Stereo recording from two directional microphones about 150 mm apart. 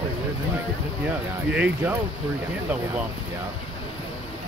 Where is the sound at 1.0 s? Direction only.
10° right (ahead or behind).